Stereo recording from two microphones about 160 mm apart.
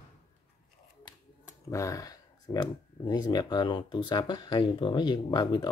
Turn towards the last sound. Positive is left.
turn(degrees=25)  # may be behind; listen again after turning